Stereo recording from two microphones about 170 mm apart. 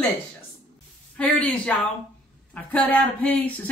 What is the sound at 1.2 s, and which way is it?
Speech, 5° left (ahead or behind).